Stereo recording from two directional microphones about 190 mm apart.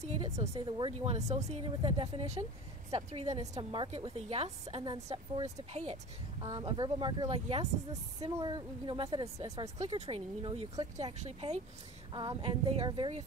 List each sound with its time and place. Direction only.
0.0 s a woman's voice: 35° right (ahead or behind)
0.6 s a woman's voice: 25° right (ahead or behind)
8.3 s a woman's voice: 20° right (ahead or behind)